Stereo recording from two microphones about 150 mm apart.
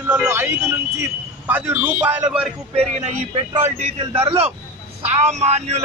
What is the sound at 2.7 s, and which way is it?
A man's voice, 45° right (ahead or behind).